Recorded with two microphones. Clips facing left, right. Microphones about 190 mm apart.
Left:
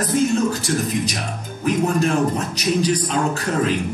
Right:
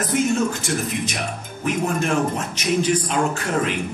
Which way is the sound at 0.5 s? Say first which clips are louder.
Left 3 dB; 35° left (ahead or behind).